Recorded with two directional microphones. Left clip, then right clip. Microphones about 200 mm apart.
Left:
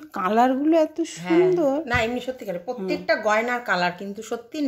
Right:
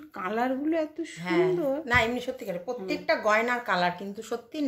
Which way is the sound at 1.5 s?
30° left (ahead or behind).